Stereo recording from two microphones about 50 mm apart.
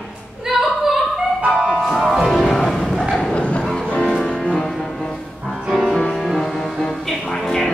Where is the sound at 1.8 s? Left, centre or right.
Centre.